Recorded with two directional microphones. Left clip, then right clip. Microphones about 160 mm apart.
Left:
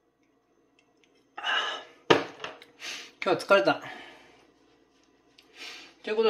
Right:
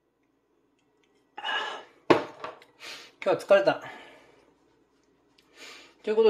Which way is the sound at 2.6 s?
10° right (ahead or behind).